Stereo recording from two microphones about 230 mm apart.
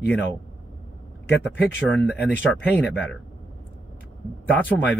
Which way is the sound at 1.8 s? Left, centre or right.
Centre.